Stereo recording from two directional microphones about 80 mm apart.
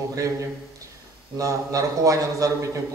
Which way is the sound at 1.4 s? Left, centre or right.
Right.